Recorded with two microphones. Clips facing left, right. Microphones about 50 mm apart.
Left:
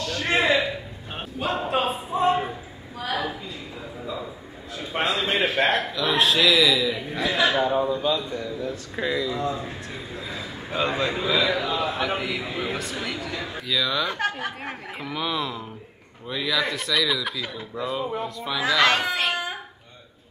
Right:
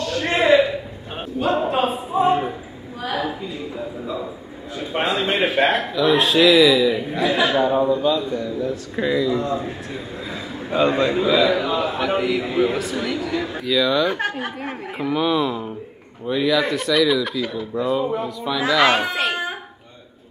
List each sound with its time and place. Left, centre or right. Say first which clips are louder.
0.1 s a sound: right 5 dB; centre
4.9 s a man's voice: right 3 dB; centre
9.6 s a man's voice: right 5 dB; centre